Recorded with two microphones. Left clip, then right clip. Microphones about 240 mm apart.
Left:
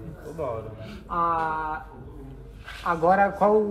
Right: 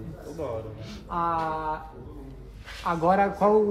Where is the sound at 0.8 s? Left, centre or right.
Centre.